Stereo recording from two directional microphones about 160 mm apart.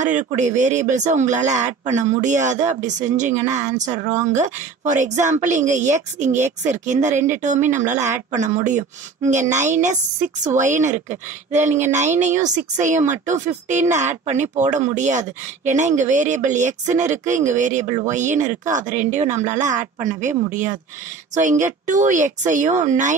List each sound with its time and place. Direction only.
0.0 s speech: 50° right (ahead or behind)